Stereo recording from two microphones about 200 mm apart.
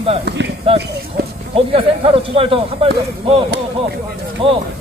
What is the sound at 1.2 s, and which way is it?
Speech, 50° right (ahead or behind).